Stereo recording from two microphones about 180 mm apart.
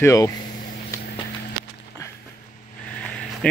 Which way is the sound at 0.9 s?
15° left (ahead or behind).